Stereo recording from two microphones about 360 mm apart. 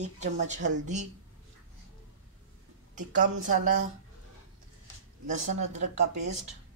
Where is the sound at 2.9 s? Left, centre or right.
Right.